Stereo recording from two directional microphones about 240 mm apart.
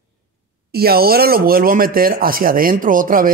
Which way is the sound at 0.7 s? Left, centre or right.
Right.